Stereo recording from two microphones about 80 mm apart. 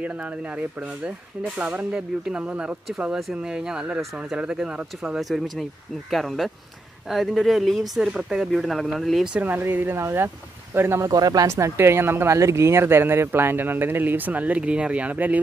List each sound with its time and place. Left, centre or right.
1.9 s a man's voice: centre
9.4 s speech: right
11.1 s speech: right
11.4 s speech: right; by 15.4 s centre